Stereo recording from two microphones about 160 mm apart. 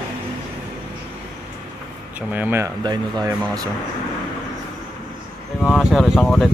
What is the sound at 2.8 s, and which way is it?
Speech, 25° right (ahead or behind).